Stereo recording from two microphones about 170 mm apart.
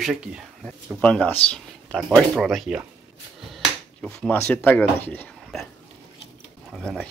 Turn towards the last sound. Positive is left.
turn(degrees=5)  # may be behind; listen again after turning